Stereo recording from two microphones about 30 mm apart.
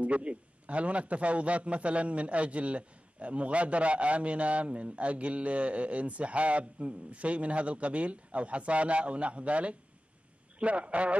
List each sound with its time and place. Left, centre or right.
0.0 s a man's voice: right